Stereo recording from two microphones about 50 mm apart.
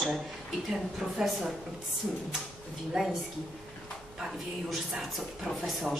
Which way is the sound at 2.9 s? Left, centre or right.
Centre.